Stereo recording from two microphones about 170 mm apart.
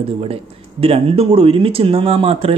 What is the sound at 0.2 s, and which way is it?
Speech, 35° right (ahead or behind).